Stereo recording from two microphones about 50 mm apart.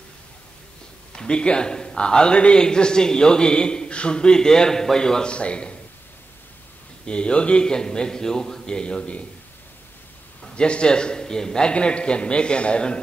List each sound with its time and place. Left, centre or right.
1.1 s a man's voice: centre
7.1 s a man's voice: left
10.4 s a man's voice: centre